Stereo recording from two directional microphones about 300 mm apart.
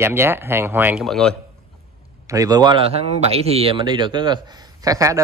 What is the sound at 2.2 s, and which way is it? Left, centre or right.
Speech, centre.